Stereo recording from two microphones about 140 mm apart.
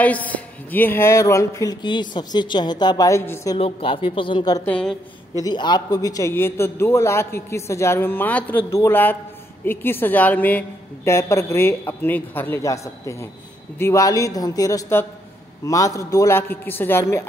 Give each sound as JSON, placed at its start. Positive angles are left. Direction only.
{"t": 0.0, "sound": "a man's voice", "side_deg": 10}
{"t": 3.5, "sound": "speech", "side_deg": 40}
{"t": 4.6, "sound": "a woman's voice", "side_deg": 10}
{"t": 5.4, "sound": "a man's voice", "side_deg": 30}